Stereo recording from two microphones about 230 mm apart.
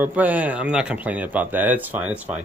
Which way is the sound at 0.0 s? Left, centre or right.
Centre.